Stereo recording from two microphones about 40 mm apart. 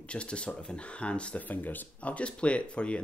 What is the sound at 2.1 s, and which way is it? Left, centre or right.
Speech, left.